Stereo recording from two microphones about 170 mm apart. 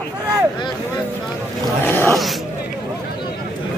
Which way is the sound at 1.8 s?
15° left (ahead or behind).